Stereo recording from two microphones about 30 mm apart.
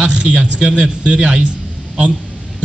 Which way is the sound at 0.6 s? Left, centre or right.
Right.